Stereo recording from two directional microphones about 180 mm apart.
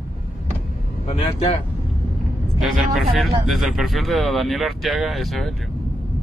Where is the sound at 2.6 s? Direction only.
Centre (ahead or behind).